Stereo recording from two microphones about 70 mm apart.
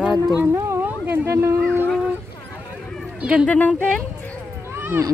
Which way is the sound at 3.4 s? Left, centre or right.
Left.